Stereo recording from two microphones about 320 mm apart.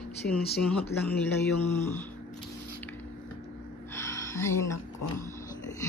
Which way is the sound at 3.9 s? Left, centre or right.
Centre.